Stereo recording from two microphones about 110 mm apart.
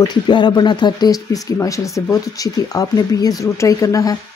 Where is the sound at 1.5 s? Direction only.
30° left (ahead or behind).